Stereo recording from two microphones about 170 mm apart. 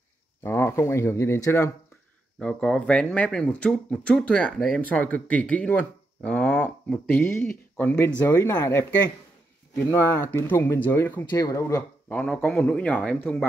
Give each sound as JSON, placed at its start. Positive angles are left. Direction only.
{"t": 0.4, "sound": "speech", "side_deg": 15}
{"t": 2.3, "sound": "speech", "side_deg": 5}